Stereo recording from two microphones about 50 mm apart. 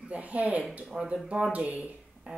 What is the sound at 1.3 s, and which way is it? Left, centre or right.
Speech, right.